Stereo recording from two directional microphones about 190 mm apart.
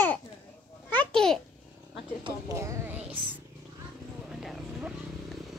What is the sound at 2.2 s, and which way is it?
Music, 15° right (ahead or behind).